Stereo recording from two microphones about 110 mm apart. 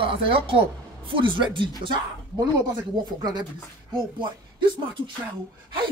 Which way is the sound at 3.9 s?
50° right (ahead or behind).